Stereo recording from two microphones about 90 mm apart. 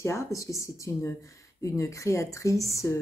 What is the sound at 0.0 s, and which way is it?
Speech, 35° left (ahead or behind).